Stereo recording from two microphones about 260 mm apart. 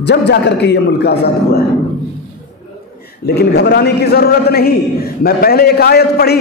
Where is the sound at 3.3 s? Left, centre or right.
Left.